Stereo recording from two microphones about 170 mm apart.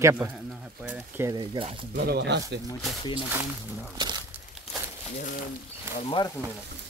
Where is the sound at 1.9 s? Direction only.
70° right (ahead or behind).